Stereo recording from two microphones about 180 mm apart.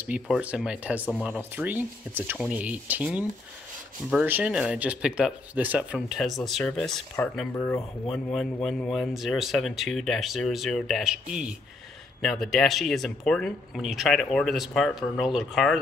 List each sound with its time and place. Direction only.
0.0 s speech: 10° right (ahead or behind)
12.2 s speech: centre (ahead or behind)